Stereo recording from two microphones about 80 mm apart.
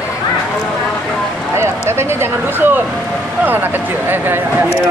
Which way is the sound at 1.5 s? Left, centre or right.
Right.